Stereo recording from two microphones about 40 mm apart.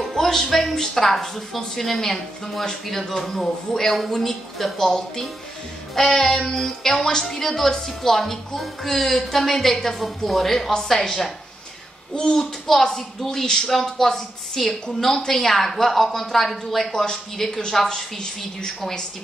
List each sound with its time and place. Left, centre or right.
0.0 s a woman's voice: centre
12.2 s a woman's voice: centre